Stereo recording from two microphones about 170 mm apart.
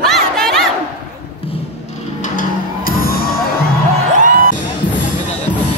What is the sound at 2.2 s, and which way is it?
Music, 55° left (ahead or behind).